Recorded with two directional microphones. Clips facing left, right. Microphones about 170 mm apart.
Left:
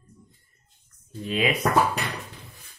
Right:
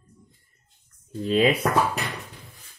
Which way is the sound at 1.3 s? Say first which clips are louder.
Right 5 dB; 30° right (ahead or behind).